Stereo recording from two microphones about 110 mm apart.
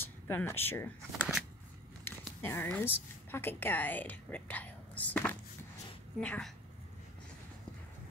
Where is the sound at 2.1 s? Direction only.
20° left (ahead or behind).